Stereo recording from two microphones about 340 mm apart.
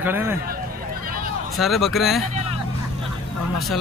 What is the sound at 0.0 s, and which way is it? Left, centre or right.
Speech, centre.